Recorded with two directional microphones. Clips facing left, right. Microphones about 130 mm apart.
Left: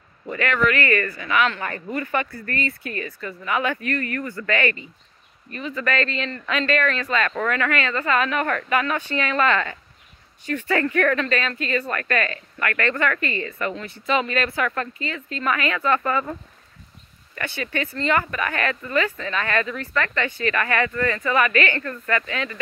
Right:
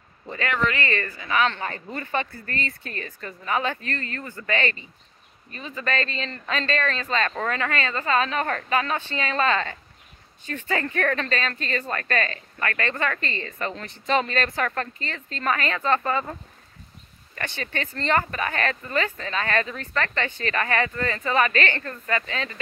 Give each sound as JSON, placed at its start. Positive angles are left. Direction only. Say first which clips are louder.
{"t": 0.3, "sound": "speech", "louder": "left 4 dB", "side_deg": -25}
{"t": 10.7, "sound": "speech", "louder": "left 4 dB", "side_deg": -25}
{"t": 17.4, "sound": "speech", "louder": "left 3 dB", "side_deg": -40}